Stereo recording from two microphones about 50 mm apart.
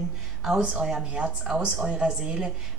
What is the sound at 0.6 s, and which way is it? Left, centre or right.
Speech, centre.